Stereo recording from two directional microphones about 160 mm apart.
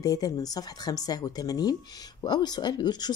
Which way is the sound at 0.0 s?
25° left (ahead or behind).